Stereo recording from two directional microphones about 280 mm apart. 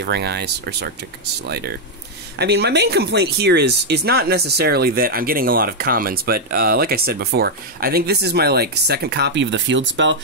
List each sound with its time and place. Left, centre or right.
0.0 s speech: right
2.3 s speech: right